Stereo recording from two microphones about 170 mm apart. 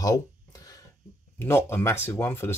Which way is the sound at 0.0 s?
20° left (ahead or behind).